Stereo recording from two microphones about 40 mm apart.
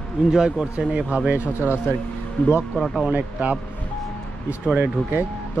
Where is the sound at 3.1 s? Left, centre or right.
Right.